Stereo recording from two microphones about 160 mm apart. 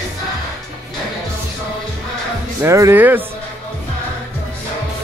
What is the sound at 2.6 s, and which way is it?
Speech, 15° right (ahead or behind).